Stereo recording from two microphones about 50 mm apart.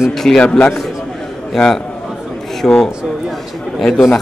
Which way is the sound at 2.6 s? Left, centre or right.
Centre.